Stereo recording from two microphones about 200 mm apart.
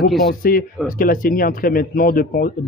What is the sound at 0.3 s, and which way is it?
Speech, 45° left (ahead or behind).